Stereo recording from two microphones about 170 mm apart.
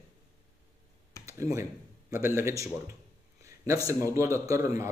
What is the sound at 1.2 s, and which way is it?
Speech, 15° right (ahead or behind).